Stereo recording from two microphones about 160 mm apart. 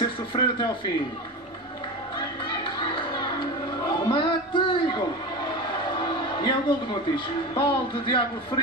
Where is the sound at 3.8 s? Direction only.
30° left (ahead or behind).